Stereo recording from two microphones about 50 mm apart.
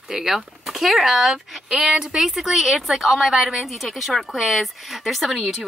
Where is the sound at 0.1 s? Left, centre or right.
Centre.